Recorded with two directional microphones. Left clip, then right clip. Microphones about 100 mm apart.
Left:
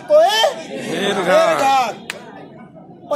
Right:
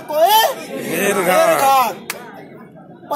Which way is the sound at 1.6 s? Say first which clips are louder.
Right 2 dB; 30° left (ahead or behind).